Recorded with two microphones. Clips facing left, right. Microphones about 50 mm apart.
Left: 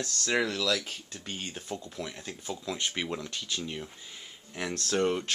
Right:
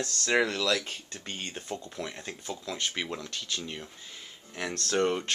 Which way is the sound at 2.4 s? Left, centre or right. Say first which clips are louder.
Left 1 dB; centre.